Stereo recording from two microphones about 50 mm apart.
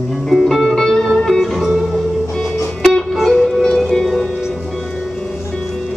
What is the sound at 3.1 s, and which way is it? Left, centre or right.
Music, centre.